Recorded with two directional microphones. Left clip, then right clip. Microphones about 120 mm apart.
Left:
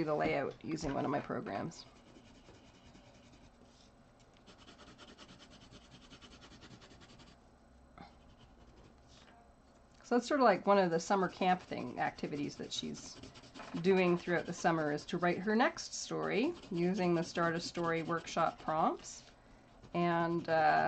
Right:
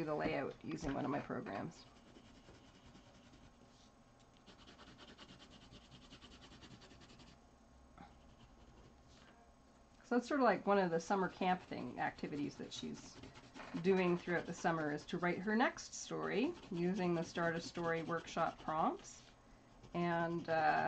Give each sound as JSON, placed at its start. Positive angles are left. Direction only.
{"t": 0.0, "sound": "speech", "side_deg": 35}
{"t": 4.5, "sound": "rub", "side_deg": 5}
{"t": 6.0, "sound": "a sound", "side_deg": 5}
{"t": 10.0, "sound": "speech", "side_deg": 35}
{"t": 13.1, "sound": "scratch", "side_deg": 5}
{"t": 13.8, "sound": "speech", "side_deg": 35}